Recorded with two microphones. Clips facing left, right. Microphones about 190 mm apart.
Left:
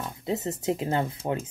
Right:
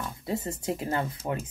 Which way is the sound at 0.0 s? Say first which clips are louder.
Left 2 dB; 20° left (ahead or behind).